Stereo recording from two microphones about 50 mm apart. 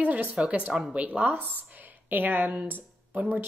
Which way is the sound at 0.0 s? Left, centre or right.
Right.